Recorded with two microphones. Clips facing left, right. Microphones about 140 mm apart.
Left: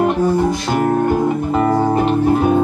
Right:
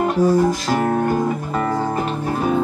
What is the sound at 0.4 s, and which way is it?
Music, 25° left (ahead or behind).